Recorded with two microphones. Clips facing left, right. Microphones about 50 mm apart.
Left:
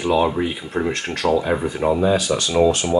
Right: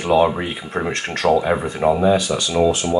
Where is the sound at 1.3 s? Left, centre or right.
Centre.